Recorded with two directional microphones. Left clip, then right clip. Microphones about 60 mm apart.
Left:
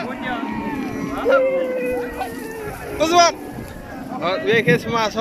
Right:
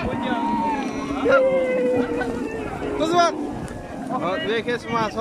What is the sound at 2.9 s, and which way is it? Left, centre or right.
Speech, centre.